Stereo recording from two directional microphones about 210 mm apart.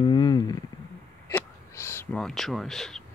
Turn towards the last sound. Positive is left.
turn(degrees=0)  # may be behind; listen again after turning